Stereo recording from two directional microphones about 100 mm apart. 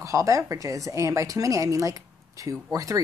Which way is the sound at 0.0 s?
30° right (ahead or behind).